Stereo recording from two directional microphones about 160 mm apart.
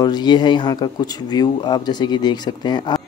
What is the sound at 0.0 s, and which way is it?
Speech, 25° left (ahead or behind).